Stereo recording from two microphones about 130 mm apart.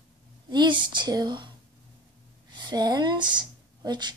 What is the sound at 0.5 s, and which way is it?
A woman's voice, 35° right (ahead or behind).